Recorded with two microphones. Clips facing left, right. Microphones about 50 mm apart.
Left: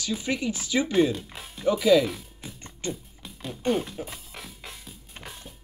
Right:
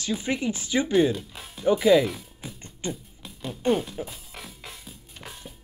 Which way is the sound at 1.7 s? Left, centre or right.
Centre.